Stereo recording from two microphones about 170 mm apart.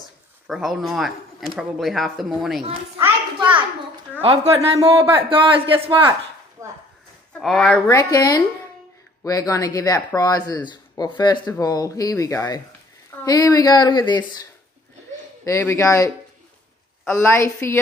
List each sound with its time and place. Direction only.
0.5 s speech: centre (ahead or behind)
4.2 s a woman's voice: 35° right (ahead or behind)
7.3 s speech: 5° left (ahead or behind)
7.9 s speech: 20° left (ahead or behind)
15.4 s a woman's voice: 15° left (ahead or behind)